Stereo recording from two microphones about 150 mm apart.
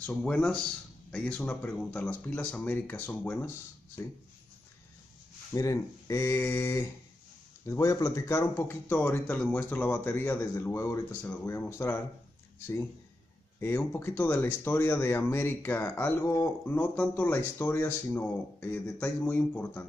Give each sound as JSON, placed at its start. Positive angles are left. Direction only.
{"t": 0.1, "sound": "speech", "side_deg": 10}
{"t": 5.5, "sound": "speech", "side_deg": 20}